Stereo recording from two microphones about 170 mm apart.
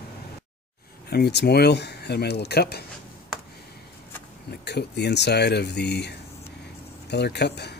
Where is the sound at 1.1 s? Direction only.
75° left (ahead or behind).